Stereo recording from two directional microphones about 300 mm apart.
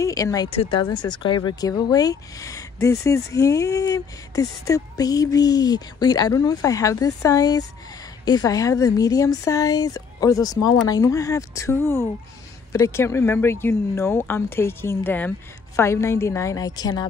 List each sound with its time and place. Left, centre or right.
0.0 s speech: centre